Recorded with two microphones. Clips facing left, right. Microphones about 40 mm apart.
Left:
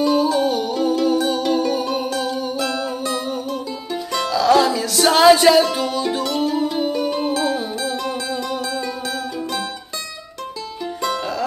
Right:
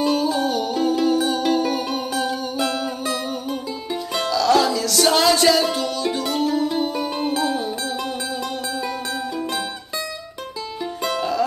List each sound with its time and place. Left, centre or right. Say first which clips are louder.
0.0 s music: left 3 dB; centre
4.3 s music: left 2 dB; centre
6.9 s music: left 3 dB; centre
11.0 s music: right 1 dB; centre